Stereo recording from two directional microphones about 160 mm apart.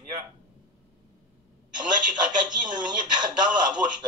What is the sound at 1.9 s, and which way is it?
A man's voice, 30° right (ahead or behind).